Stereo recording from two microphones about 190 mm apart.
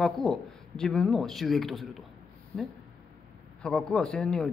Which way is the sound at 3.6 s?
5° left (ahead or behind).